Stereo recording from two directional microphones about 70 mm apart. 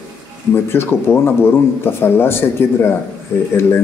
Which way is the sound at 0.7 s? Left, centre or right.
Left.